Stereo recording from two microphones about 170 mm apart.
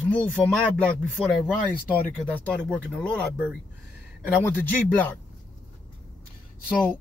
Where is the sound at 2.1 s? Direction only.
10° left (ahead or behind).